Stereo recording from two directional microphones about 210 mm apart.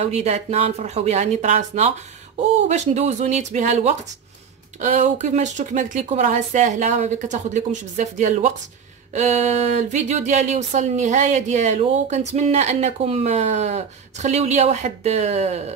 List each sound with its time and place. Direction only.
0.0 s speech: 30° right (ahead or behind)